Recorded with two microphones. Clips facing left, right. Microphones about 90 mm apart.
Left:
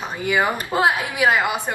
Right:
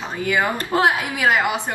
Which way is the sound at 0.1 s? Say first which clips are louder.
Even; 15° left (ahead or behind).